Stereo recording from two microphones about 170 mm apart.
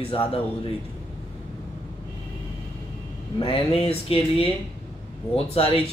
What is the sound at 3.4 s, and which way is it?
Speech, 35° left (ahead or behind).